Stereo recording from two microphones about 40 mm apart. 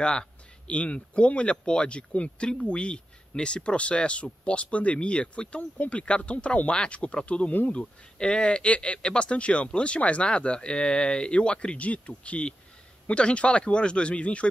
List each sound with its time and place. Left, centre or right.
0.0 s speech: left
0.7 s speech: left